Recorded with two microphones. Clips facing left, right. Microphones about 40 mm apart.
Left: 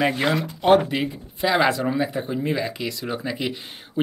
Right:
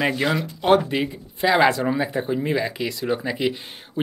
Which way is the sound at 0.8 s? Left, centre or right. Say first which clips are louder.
Right 1 dB; centre.